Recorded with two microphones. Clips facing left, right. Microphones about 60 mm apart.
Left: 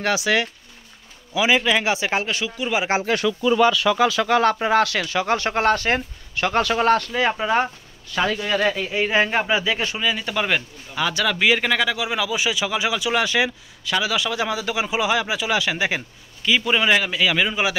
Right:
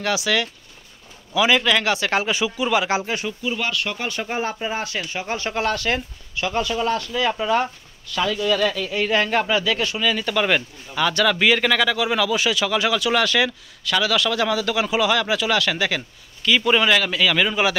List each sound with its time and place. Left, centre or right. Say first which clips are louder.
0.0 s speech: left 1 dB; left
1.3 s a man's voice: right 1 dB; centre
2.2 s speech: right 3 dB; centre
2.9 s speech: left 1 dB; left
4.2 s speech: left 7 dB; left
5.5 s speech: left 1 dB; left
6.3 s a man's voice: left 3 dB; left; by 17.7 s centre